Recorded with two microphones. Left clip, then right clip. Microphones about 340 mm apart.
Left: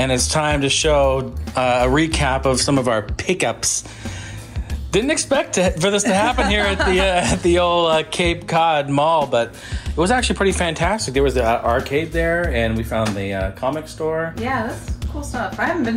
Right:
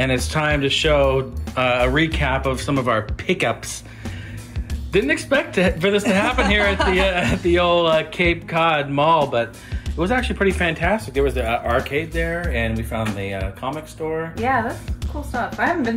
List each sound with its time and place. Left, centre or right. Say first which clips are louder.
0.0 s speech: left 2 dB; centre
4.9 s speech: left 1 dB; centre